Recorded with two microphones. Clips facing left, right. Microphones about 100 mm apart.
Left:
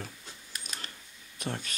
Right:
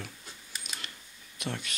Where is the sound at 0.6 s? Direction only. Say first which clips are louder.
Left 1 dB; 40° left (ahead or behind).